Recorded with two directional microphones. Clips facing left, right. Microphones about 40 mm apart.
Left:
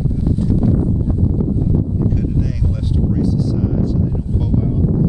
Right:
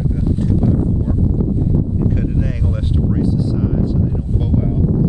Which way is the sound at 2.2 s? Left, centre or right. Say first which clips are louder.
Even; right.